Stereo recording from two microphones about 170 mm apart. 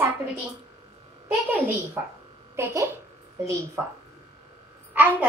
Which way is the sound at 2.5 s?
15° right (ahead or behind).